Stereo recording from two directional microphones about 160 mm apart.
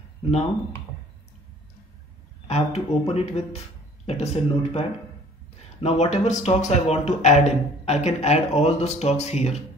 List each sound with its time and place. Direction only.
2.4 s a man's voice: 40° left (ahead or behind)